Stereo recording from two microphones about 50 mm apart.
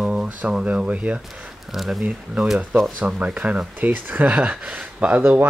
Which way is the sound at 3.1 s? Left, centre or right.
Right.